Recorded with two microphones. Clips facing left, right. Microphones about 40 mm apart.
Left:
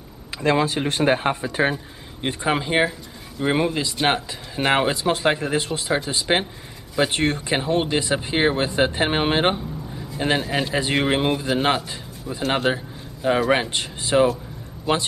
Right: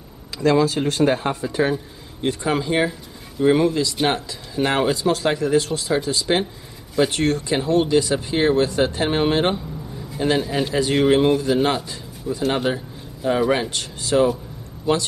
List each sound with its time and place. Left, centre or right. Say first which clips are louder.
0.4 s a man's voice: right 3 dB; left